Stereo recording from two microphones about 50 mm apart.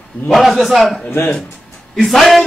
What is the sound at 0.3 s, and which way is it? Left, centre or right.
Speech, centre.